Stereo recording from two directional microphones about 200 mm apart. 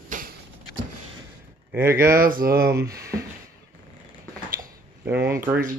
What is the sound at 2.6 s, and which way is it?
Speech, 15° right (ahead or behind).